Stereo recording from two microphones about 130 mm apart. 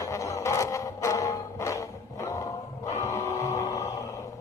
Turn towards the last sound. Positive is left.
turn(degrees=25)  # may be behind; listen again after turning